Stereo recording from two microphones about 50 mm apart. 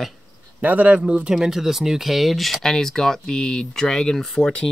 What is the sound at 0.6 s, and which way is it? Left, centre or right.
Speech, right.